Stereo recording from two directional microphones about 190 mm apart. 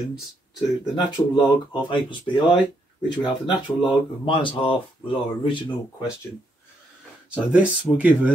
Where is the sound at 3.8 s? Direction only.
25° left (ahead or behind).